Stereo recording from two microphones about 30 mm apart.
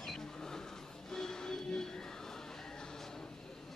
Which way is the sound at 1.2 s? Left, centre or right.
Centre.